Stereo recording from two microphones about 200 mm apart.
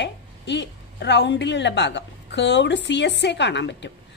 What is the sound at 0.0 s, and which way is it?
A woman's voice, 60° left (ahead or behind).